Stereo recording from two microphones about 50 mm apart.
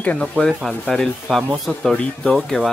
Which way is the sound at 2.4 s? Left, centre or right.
Centre.